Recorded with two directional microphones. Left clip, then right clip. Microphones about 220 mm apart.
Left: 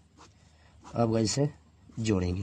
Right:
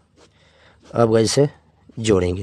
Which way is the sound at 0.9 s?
35° right (ahead or behind).